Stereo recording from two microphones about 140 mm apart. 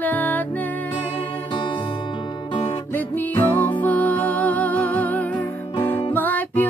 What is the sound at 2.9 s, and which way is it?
Music, 15° left (ahead or behind).